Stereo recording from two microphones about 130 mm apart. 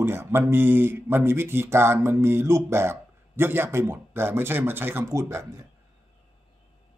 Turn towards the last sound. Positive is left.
turn(degrees=-20)  # may be behind; listen again after turning